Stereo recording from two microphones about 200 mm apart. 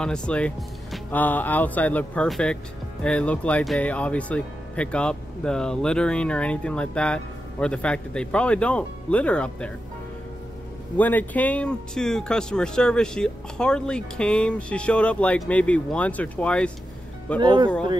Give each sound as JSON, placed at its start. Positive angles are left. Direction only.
{"t": 0.0, "sound": "speech", "side_deg": 5}
{"t": 11.0, "sound": "speech", "side_deg": 10}
{"t": 17.4, "sound": "speech", "side_deg": -25}